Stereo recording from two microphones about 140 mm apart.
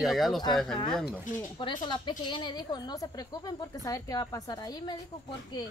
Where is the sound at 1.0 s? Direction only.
35° left (ahead or behind).